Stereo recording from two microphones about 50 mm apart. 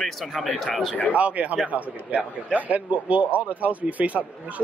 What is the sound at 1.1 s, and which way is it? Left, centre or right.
A man's voice, right.